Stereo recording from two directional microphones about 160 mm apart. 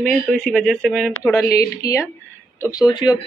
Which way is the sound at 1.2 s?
15° left (ahead or behind).